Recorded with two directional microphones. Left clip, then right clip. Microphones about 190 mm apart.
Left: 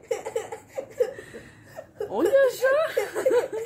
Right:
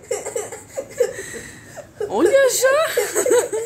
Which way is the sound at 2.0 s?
Centre (ahead or behind).